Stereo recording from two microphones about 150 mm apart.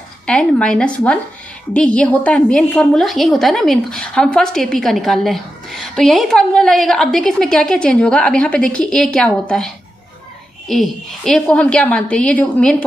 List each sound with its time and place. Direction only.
0.3 s a woman's voice: 5° left (ahead or behind)
10.7 s a woman's voice: centre (ahead or behind)